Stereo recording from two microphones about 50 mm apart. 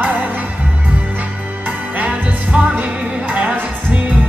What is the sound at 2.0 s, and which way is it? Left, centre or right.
Music, right.